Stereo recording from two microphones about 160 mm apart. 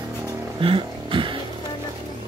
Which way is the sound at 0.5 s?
35° right (ahead or behind).